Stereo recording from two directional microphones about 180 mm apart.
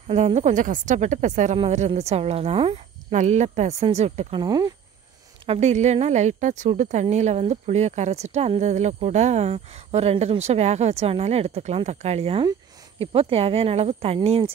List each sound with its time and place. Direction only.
0.1 s a woman's voice: 40° right (ahead or behind)
4.4 s speech: 20° right (ahead or behind)
5.5 s a woman's voice: 40° right (ahead or behind)